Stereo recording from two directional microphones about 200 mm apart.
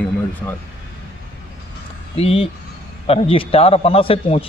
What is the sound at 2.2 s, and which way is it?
A man's voice, 30° left (ahead or behind).